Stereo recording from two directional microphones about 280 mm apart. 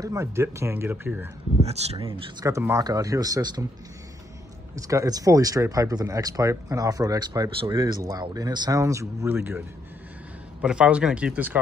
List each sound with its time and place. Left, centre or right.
0.0 s speech: centre
1.6 s speech: right
4.7 s speech: centre
10.6 s speech: centre